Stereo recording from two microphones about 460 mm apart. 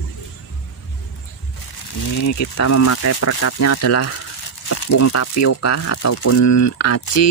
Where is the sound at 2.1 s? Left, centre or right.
Left.